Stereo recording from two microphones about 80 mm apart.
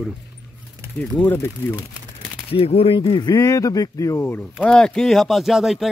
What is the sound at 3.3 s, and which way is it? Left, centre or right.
Speech, left.